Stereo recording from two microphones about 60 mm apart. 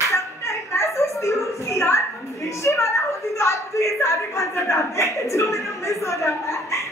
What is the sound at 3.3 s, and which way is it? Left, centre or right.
A woman's voice, left.